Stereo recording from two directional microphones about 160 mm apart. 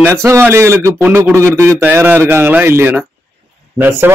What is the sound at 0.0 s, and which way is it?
A man's voice, 15° right (ahead or behind).